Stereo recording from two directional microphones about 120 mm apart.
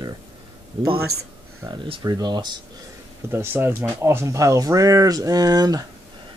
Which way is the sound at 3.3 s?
20° right (ahead or behind).